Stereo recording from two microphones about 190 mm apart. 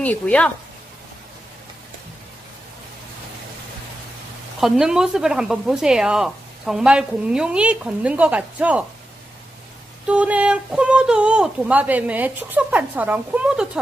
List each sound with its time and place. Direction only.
0.0 s speech: 5° left (ahead or behind)
4.6 s speech: centre (ahead or behind)
10.0 s speech: 5° right (ahead or behind)